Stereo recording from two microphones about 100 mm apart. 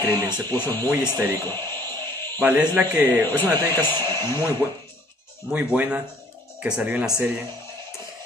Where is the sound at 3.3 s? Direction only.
20° left (ahead or behind).